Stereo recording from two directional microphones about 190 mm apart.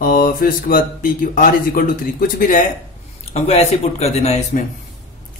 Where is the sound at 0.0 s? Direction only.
50° left (ahead or behind).